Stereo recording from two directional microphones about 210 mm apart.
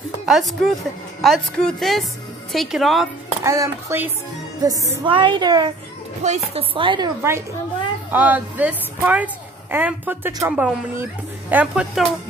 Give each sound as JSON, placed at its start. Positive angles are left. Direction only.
{"t": 0.3, "sound": "a woman's voice", "side_deg": 0}
{"t": 3.4, "sound": "a woman's voice", "side_deg": -15}
{"t": 8.1, "sound": "a woman's voice", "side_deg": -10}